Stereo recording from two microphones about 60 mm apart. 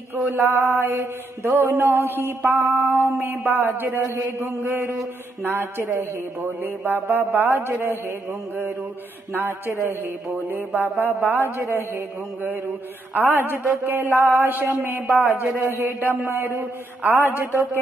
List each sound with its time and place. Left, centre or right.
0.1 s mantra: right
5.4 s mantra: right
9.3 s mantra: right
16.2 s mantra: right
17.0 s mantra: right